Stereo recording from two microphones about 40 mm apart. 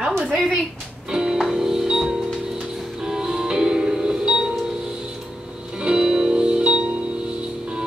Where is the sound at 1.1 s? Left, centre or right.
Centre.